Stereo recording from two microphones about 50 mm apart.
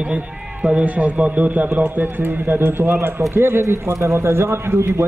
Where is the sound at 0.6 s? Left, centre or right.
Right.